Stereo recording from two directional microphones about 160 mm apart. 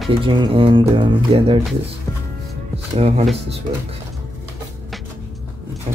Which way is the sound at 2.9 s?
35° right (ahead or behind).